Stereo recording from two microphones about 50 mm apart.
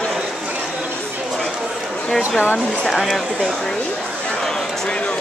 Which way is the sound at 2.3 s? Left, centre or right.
Left.